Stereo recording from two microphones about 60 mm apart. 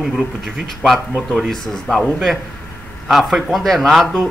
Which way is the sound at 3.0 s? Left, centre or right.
Centre.